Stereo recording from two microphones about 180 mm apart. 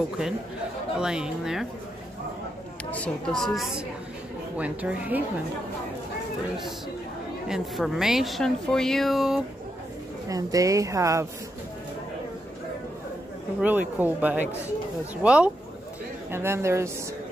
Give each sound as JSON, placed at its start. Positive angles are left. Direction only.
{"t": 0.9, "sound": "speech", "side_deg": -5}
{"t": 2.9, "sound": "a woman's voice", "side_deg": 5}
{"t": 7.4, "sound": "speech", "side_deg": 0}
{"t": 10.2, "sound": "a woman's voice", "side_deg": -20}
{"t": 13.6, "sound": "a woman's voice", "side_deg": -10}